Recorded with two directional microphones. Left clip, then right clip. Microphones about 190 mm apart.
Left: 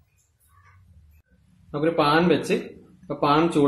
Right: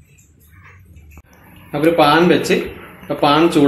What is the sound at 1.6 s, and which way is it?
Speech, 45° left (ahead or behind).